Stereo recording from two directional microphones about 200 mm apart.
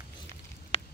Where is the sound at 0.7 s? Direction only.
35° left (ahead or behind).